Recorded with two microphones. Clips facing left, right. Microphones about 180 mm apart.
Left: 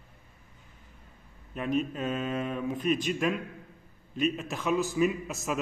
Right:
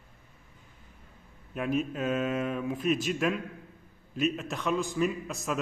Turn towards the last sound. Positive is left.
turn(degrees=5)  # may be behind; listen again after turning